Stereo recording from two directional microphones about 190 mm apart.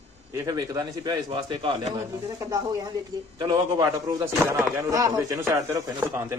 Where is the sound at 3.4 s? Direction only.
20° right (ahead or behind).